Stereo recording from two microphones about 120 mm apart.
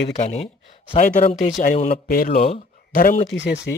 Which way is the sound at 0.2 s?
70° left (ahead or behind).